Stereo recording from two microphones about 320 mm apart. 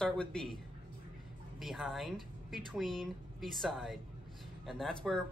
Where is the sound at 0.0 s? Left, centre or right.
Centre.